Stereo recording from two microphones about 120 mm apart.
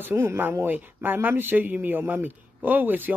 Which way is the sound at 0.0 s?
20° right (ahead or behind).